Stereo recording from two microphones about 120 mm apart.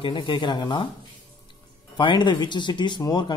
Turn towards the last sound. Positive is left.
turn(degrees=35)  # may be behind; listen again after turning